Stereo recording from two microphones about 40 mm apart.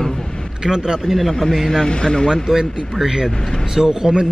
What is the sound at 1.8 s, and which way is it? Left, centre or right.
Speech, centre.